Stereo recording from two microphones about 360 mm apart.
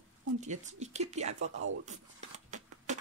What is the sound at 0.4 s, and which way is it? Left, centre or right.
Child singing, centre.